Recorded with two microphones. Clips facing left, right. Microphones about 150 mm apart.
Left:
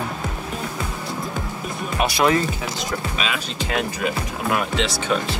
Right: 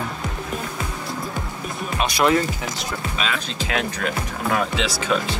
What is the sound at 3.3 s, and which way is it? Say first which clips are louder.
Speech: even; 5° left (ahead or behind).